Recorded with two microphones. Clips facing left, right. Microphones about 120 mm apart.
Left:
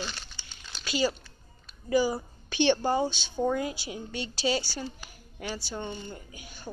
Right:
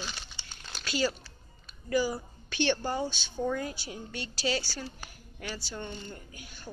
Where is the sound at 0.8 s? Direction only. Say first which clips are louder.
Left 2 dB; 5° left (ahead or behind).